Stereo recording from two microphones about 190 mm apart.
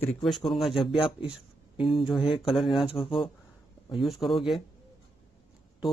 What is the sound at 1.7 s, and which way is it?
Speech, 30° left (ahead or behind).